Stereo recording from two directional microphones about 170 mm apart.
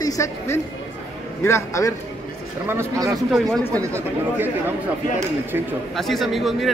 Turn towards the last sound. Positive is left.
turn(degrees=0)  # may be behind; listen again after turning